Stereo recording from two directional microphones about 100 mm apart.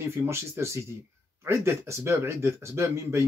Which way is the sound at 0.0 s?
25° right (ahead or behind).